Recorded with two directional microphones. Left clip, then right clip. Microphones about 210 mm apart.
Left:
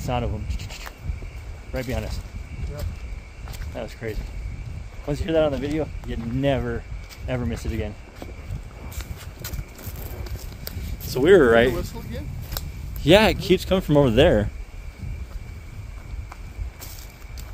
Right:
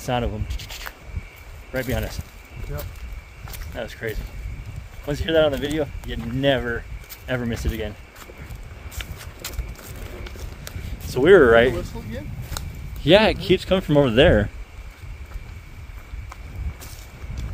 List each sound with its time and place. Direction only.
0.0 s speech: 5° right (ahead or behind)
3.7 s speech: 5° right (ahead or behind)
11.1 s speech: centre (ahead or behind)